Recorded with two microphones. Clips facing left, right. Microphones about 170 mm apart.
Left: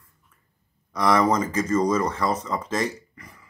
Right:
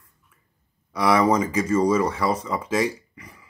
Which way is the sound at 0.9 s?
10° right (ahead or behind).